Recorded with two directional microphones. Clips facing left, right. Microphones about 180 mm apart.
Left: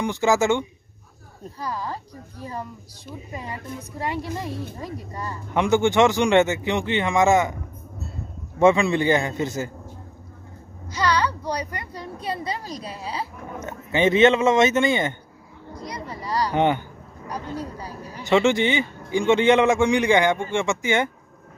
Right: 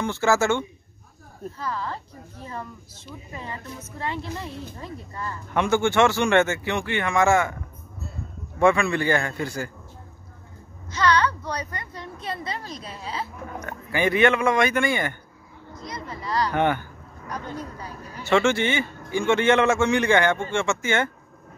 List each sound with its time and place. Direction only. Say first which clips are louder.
0.0 s a man's voice: left 1 dB; 15° left (ahead or behind)
8.5 s speech: left 3 dB; 20° left (ahead or behind)
10.9 s a man's voice: right 1 dB; 10° left (ahead or behind)
12.6 s a woman's voice: left 3 dB; 35° left (ahead or behind)
13.0 s a man's voice: even; 10° left (ahead or behind)
13.6 s a man's voice: left 4 dB; 25° left (ahead or behind)
18.2 s a man's voice: left 2 dB; 15° left (ahead or behind)